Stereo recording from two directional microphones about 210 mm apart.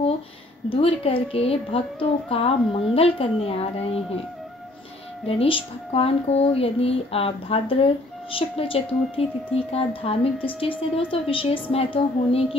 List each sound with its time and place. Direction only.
0.7 s speech: 25° left (ahead or behind)
5.2 s speech: 25° left (ahead or behind)